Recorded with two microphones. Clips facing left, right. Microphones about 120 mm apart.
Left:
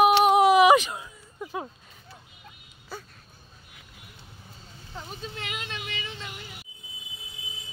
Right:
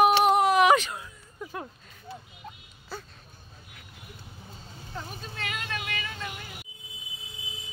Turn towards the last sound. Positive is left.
turn(degrees=20)  # may be behind; listen again after turning